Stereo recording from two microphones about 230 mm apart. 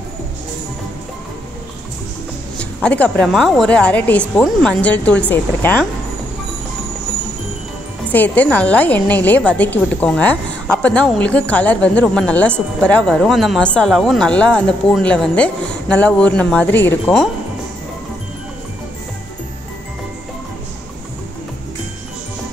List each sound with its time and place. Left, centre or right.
2.8 s a woman's voice: centre
8.1 s a woman's voice: centre